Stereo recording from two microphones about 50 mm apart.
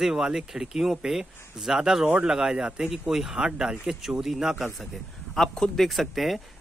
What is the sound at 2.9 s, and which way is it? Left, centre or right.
Speech, centre.